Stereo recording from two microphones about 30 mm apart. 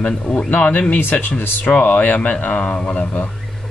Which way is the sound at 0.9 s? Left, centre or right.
Left.